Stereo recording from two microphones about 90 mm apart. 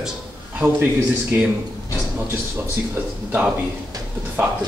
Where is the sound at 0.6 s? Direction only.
25° right (ahead or behind).